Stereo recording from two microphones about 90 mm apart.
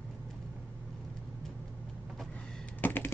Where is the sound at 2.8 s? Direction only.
20° left (ahead or behind).